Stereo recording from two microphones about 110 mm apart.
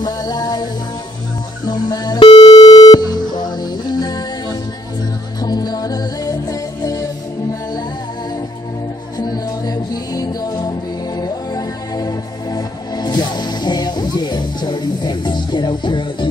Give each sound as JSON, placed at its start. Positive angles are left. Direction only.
{"t": 0.0, "sound": "music", "side_deg": 35}
{"t": 1.7, "sound": "music", "side_deg": 40}
{"t": 9.2, "sound": "music", "side_deg": 35}